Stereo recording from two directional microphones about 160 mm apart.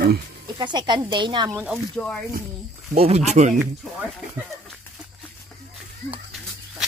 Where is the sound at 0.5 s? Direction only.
30° right (ahead or behind).